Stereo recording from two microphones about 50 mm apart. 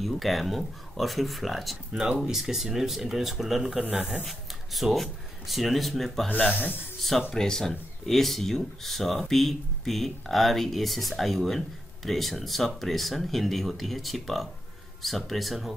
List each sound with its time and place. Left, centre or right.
0.0 s speech: centre
6.3 s speech: left
7.0 s speech: centre